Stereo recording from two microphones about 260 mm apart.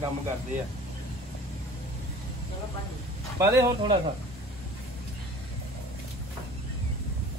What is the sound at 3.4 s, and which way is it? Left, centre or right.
Speech, centre.